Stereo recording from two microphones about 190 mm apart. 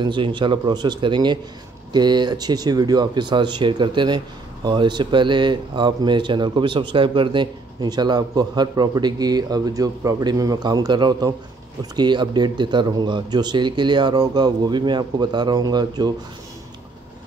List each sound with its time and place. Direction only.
0.0 s speech: 25° right (ahead or behind)